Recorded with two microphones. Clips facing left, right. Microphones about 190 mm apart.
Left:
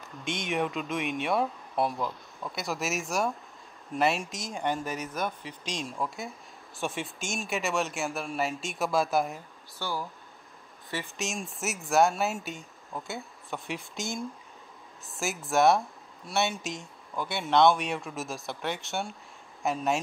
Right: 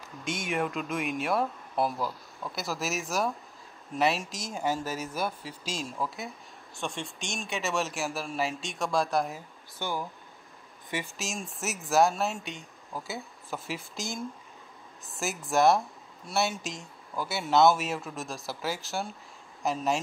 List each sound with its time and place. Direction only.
0.0 s speech: centre (ahead or behind)
9.8 s speech: 20° right (ahead or behind)
11.1 s speech: centre (ahead or behind)